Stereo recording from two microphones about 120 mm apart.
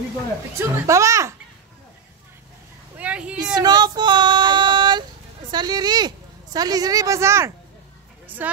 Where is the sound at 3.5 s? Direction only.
35° right (ahead or behind).